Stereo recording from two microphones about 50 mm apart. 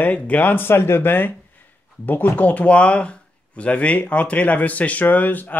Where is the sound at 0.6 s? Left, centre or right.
Left.